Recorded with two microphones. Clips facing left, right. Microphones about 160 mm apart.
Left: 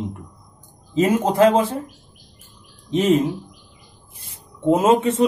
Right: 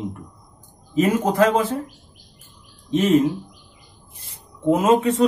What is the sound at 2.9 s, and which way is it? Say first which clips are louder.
Speech: even; 20° left (ahead or behind).